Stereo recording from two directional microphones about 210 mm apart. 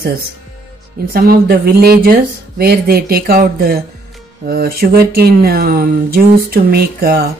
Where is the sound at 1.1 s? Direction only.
45° right (ahead or behind).